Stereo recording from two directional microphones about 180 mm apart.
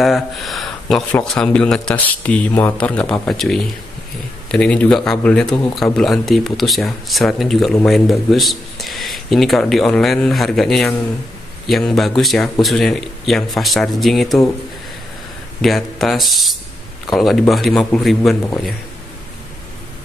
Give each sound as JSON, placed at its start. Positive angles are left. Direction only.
{"t": 0.0, "sound": "speech", "side_deg": 0}
{"t": 15.6, "sound": "speech", "side_deg": 0}